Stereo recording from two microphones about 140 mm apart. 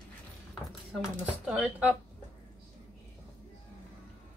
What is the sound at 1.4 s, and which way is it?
Speech, 5° right (ahead or behind).